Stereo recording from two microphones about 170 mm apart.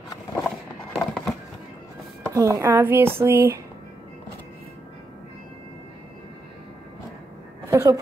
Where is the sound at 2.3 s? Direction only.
20° right (ahead or behind).